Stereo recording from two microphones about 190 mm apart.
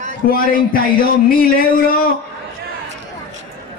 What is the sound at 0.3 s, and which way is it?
Speech, 50° left (ahead or behind).